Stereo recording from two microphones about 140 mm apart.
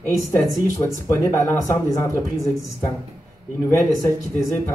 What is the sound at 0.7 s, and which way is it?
Speech, 20° left (ahead or behind).